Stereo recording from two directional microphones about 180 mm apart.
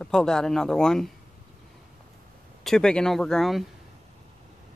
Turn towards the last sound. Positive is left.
turn(degrees=0)  # may be behind; listen again after turning